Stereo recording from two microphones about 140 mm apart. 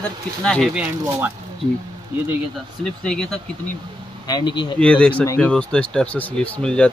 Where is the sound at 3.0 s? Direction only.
5° left (ahead or behind).